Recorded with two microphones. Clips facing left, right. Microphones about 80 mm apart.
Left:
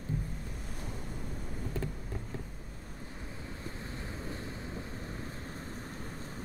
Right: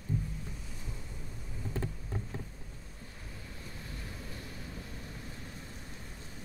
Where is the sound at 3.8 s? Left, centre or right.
Left.